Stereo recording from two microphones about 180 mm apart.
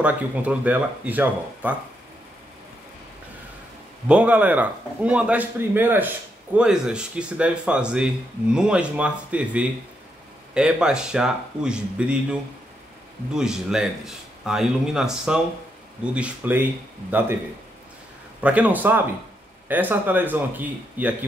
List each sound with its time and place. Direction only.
0.0 s a man's voice: 5° right (ahead or behind)
4.1 s a man's voice: 5° right (ahead or behind)
18.4 s a man's voice: 10° right (ahead or behind)